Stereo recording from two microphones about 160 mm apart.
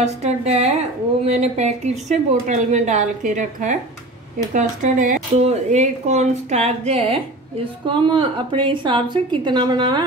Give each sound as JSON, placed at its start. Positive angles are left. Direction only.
{"t": 0.0, "sound": "a woman's voice", "side_deg": -40}